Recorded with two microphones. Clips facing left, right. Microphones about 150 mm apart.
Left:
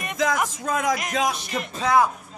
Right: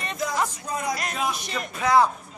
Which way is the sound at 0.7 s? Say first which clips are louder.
Left 5 dB; 90° left.